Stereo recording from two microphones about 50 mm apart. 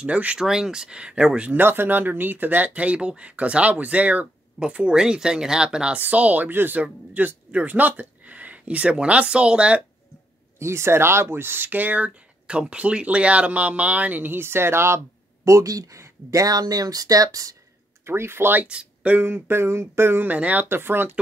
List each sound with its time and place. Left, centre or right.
0.0 s speech: right
0.4 s speech: centre
1.6 s speech: right
4.6 s speech: centre
5.9 s speech: right
6.5 s speech: right
10.6 s speech: right
15.4 s speech: right
18.0 s speech: right
18.7 s speech: right
19.1 s a sound: right
20.2 s speech: right
20.6 s a sound: right